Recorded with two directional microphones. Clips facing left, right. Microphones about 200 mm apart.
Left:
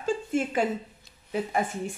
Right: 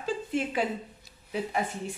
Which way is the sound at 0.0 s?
45° left (ahead or behind).